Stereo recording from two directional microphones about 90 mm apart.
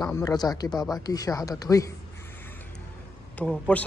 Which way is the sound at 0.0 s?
45° left (ahead or behind).